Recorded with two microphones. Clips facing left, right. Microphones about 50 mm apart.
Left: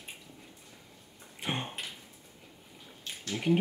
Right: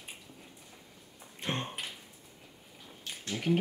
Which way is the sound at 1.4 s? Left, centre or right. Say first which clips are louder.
Even; centre.